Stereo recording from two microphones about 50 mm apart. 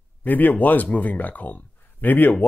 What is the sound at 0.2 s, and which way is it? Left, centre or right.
Speech, left.